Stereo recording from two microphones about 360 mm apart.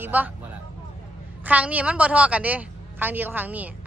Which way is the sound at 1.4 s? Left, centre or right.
Centre.